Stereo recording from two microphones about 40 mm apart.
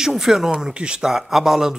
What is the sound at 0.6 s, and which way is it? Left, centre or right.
Speech, right.